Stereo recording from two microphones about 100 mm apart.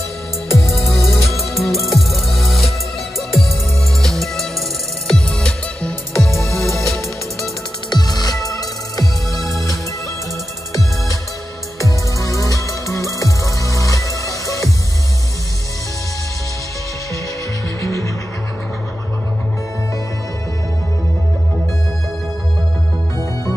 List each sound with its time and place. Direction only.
0.5 s music: centre (ahead or behind)
7.9 s music: 40° left (ahead or behind)
10.7 s music: 35° left (ahead or behind)
17.8 s music: 30° left (ahead or behind)